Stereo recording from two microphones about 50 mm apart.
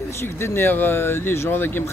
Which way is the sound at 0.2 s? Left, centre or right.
Left.